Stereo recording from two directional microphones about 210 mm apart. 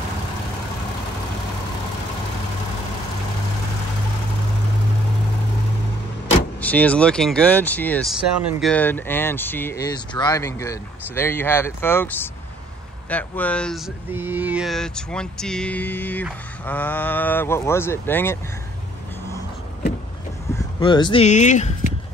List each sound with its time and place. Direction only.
6.6 s speech: 5° left (ahead or behind)
14.1 s speech: 10° right (ahead or behind); by 18.4 s 10° left (ahead or behind)
20.5 s speech: 20° left (ahead or behind)